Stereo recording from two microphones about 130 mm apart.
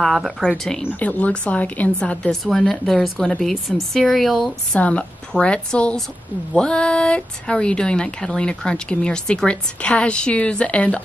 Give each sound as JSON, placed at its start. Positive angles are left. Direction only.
{"t": 0.0, "sound": "a woman's voice", "side_deg": 0}